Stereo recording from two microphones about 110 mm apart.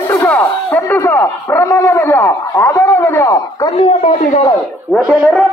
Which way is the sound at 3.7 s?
60° left (ahead or behind).